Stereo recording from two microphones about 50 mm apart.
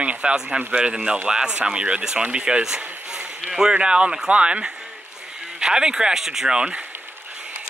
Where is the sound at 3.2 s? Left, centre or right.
Right.